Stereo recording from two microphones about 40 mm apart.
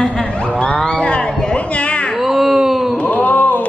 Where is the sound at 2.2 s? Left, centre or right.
Centre.